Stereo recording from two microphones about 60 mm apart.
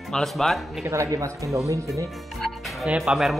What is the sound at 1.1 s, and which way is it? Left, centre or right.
Speech, right.